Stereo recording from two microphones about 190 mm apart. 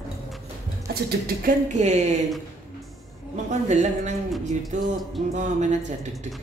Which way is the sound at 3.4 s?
35° right (ahead or behind).